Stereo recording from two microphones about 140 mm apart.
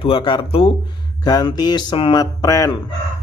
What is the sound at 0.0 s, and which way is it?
Speech, 35° left (ahead or behind).